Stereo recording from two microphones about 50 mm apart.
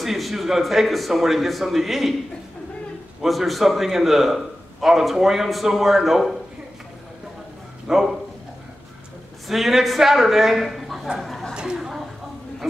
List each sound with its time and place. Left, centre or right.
0.0 s a man's voice: centre
3.2 s a man's voice: centre
7.9 s a man's voice: centre
9.5 s a man's voice: centre
11.5 s a sound: centre